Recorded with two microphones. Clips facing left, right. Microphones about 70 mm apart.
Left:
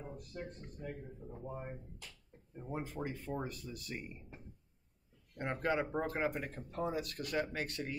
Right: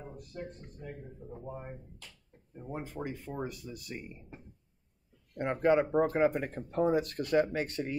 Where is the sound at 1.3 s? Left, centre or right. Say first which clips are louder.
Right 2 dB; centre.